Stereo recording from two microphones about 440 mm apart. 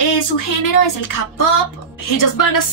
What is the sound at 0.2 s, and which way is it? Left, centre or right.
A woman's voice, left.